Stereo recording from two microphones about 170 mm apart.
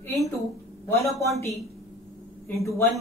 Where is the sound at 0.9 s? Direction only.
15° left (ahead or behind).